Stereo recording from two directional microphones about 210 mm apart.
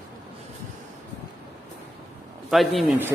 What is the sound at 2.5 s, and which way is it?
Speech, centre (ahead or behind).